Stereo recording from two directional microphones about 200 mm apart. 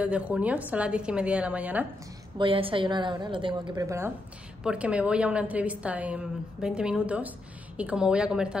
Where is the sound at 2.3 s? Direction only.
25° right (ahead or behind).